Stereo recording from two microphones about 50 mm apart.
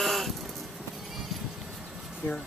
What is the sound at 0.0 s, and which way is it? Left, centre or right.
Sheep, centre.